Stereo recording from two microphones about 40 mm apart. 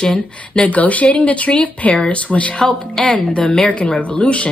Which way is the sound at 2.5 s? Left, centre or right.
Centre.